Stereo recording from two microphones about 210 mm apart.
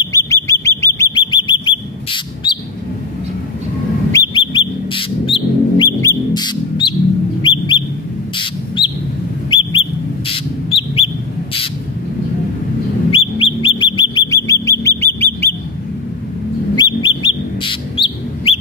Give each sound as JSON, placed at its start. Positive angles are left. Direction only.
{"t": 0.0, "sound": "chirp", "side_deg": 15}
{"t": 0.5, "sound": "bird", "side_deg": 15}
{"t": 4.1, "sound": "bird", "side_deg": 20}
{"t": 13.1, "sound": "bird", "side_deg": 25}
{"t": 16.7, "sound": "bird", "side_deg": 20}